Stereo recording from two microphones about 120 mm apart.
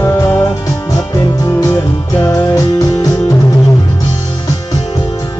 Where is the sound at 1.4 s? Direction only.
25° left (ahead or behind).